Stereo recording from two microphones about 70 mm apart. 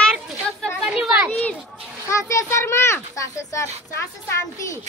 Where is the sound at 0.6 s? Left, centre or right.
Centre.